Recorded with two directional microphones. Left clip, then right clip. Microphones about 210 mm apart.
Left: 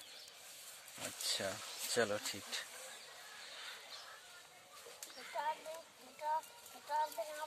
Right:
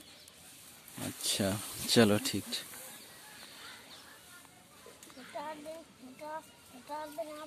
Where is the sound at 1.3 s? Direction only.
30° right (ahead or behind).